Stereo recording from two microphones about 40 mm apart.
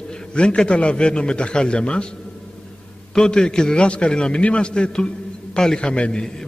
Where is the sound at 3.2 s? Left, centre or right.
Left.